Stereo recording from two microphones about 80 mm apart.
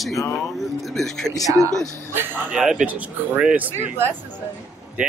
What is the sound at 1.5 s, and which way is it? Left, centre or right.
Speech, right.